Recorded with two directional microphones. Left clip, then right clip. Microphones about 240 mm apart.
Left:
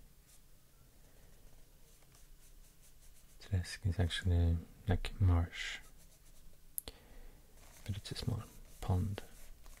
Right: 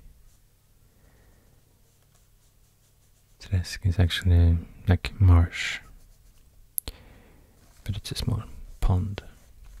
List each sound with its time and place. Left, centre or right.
3.3 s speech: centre
6.7 s clicking: centre
8.0 s speech: centre